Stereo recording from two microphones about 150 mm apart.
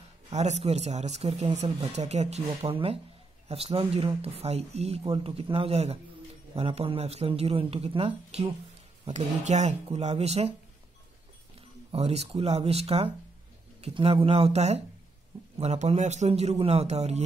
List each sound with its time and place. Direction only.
0.3 s a man's voice: 50° right (ahead or behind)
11.9 s a man's voice: 45° right (ahead or behind)